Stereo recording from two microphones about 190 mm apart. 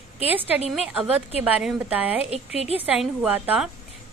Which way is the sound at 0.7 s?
5° right (ahead or behind).